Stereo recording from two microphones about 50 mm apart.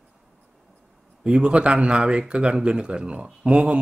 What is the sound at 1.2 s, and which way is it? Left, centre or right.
Speech, centre.